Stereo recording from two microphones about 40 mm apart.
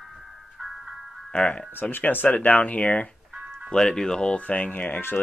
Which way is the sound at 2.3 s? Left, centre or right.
Left.